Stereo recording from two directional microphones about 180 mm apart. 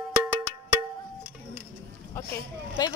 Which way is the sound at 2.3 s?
20° left (ahead or behind).